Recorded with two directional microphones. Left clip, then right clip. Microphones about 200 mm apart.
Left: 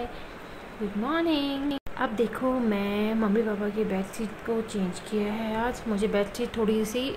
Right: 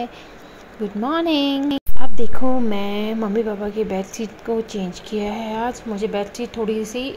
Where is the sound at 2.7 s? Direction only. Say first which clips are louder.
Right 4 dB; 20° right (ahead or behind); by 7.1 s 5° right (ahead or behind).